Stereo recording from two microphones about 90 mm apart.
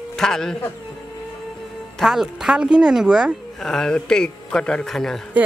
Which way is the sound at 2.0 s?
5° right (ahead or behind).